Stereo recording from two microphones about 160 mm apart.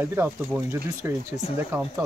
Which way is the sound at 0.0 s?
15° right (ahead or behind).